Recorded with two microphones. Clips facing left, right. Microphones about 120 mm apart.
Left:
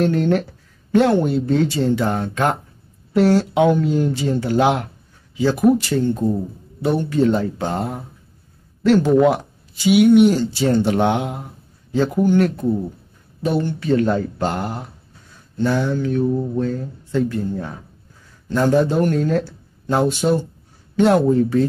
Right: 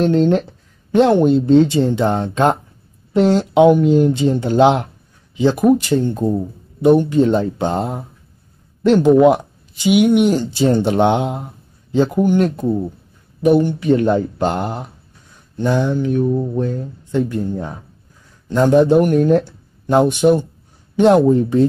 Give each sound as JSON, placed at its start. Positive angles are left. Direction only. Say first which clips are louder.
{"t": 0.0, "sound": "speech", "louder": "right 3 dB", "side_deg": -20}